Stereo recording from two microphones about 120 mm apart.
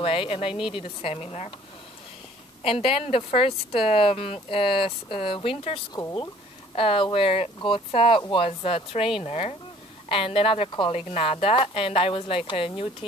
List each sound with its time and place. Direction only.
0.0 s speech: 50° left (ahead or behind)
2.6 s speech: 50° left (ahead or behind)